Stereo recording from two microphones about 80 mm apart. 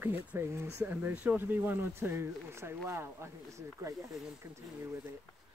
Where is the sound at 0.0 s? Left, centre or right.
Right.